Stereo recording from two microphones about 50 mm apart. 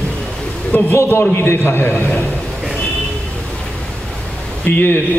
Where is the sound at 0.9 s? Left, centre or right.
Left.